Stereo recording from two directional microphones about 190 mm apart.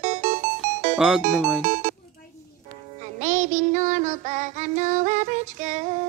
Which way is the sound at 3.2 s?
40° right (ahead or behind).